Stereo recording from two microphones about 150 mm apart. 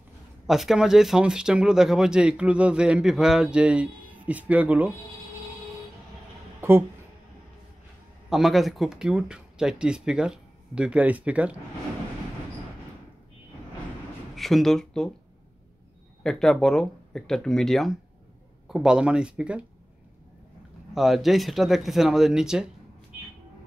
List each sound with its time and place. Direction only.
0.5 s speech: centre (ahead or behind)
8.3 s speech: centre (ahead or behind)
14.3 s speech: centre (ahead or behind)
16.2 s speech: 5° left (ahead or behind)
20.9 s speech: centre (ahead or behind)